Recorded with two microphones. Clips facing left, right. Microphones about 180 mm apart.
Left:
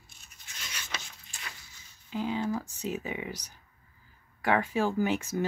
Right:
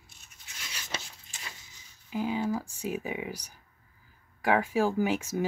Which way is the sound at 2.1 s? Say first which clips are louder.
Right 1 dB; 10° right (ahead or behind).